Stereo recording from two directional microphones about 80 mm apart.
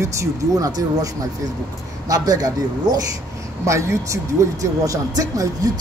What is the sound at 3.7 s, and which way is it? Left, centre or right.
Speech, right.